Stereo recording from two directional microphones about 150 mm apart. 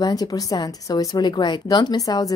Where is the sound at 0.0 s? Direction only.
25° left (ahead or behind).